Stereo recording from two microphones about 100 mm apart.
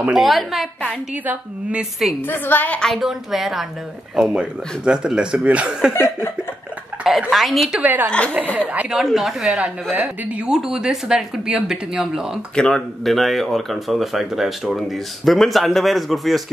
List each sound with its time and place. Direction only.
0.1 s speech: centre (ahead or behind)
1.2 s speech: 15° right (ahead or behind)
2.2 s a woman's voice: 20° left (ahead or behind)
2.8 s speech: centre (ahead or behind)
5.9 s a woman's voice: 25° left (ahead or behind)
7.1 s speech: centre (ahead or behind)
7.8 s a woman's voice: 20° right (ahead or behind)
8.1 s speech: 10° left (ahead or behind)
8.9 s speech: centre (ahead or behind)
9.8 s speech: 15° right (ahead or behind)
12.5 s speech: 5° left (ahead or behind)